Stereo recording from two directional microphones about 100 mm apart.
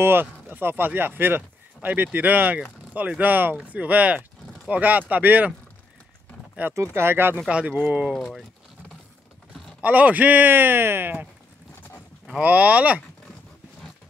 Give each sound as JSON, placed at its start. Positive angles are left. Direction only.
{"t": 0.0, "sound": "speech", "side_deg": -20}
{"t": 6.7, "sound": "speech", "side_deg": -25}
{"t": 9.8, "sound": "speech", "side_deg": -15}
{"t": 12.3, "sound": "speech", "side_deg": -15}